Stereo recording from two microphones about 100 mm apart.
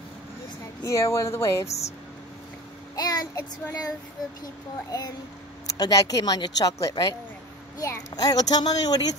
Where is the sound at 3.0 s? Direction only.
40° left (ahead or behind).